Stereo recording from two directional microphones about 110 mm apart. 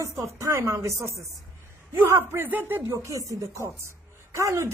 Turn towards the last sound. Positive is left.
turn(degrees=-25)  # may be behind; listen again after turning